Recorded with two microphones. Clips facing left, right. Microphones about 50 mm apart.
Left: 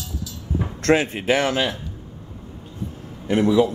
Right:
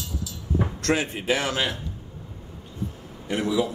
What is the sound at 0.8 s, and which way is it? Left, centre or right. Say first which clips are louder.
Speech: left 9 dB; left.